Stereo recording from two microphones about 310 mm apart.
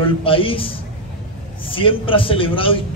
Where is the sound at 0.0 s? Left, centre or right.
Centre.